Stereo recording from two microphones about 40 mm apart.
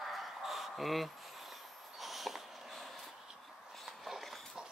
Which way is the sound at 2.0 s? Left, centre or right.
Centre.